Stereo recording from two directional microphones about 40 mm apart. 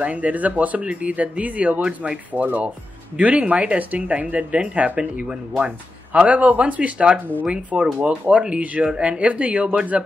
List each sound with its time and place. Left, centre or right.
0.0 s speech: right
7.4 s speech: centre